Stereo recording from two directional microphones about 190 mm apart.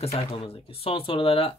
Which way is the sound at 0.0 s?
35° left (ahead or behind).